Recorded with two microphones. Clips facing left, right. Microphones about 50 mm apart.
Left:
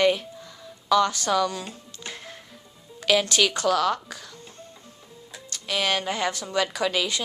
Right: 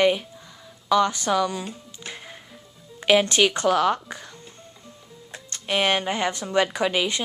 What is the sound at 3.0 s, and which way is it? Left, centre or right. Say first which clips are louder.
A woman's voice: right 3 dB; right.